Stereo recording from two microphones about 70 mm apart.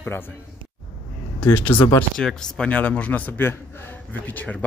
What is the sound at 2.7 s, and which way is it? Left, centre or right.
Speech, left.